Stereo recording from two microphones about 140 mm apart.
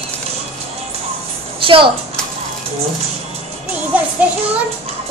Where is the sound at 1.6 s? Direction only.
40° right (ahead or behind).